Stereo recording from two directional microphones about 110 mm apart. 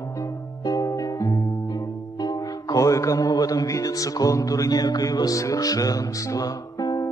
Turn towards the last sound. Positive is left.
turn(degrees=35)  # may be behind; listen again after turning